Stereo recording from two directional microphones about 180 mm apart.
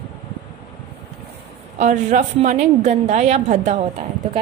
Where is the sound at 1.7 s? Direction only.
40° right (ahead or behind).